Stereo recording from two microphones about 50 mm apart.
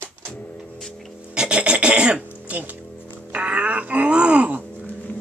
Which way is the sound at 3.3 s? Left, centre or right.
Right.